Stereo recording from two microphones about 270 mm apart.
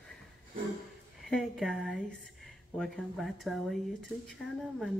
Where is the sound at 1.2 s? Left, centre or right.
Centre.